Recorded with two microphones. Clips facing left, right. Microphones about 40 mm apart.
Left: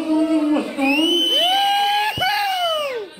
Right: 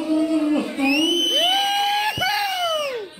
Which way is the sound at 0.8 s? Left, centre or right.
Left.